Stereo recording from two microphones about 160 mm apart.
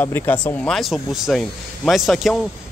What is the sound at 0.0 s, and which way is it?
Speech, 10° left (ahead or behind).